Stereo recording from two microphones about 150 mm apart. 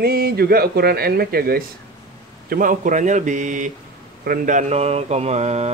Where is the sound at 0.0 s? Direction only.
90° right.